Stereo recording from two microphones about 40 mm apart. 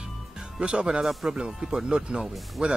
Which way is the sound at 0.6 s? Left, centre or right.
Right.